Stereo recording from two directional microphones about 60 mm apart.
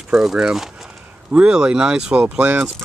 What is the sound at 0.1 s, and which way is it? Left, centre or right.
Speech, centre.